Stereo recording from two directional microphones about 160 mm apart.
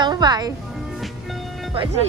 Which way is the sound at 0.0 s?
25° right (ahead or behind).